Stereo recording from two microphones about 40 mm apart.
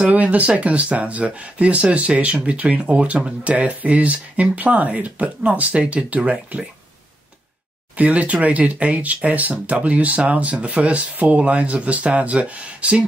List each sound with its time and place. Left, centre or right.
0.1 s speech: right
7.9 s speech: right